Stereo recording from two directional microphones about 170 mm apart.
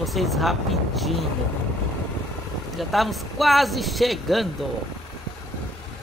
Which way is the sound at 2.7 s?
Centre (ahead or behind).